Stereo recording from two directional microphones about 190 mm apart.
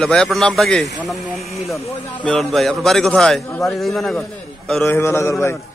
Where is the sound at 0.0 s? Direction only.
Centre (ahead or behind).